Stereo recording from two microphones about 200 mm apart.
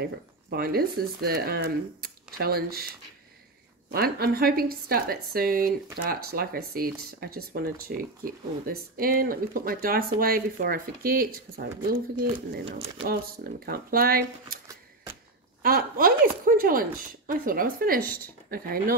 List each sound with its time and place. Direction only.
0.0 s speech: 50° right (ahead or behind)
3.9 s speech: 50° right (ahead or behind)
13.0 s speech: 50° right (ahead or behind)
15.6 s speech: 45° right (ahead or behind)